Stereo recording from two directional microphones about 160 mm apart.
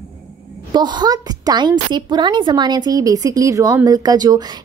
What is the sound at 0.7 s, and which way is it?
A woman's voice, 25° right (ahead or behind).